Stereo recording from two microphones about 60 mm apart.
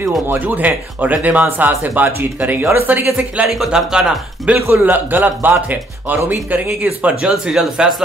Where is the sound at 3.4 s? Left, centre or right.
Centre.